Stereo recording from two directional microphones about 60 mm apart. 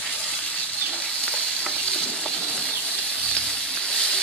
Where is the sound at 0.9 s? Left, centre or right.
Centre.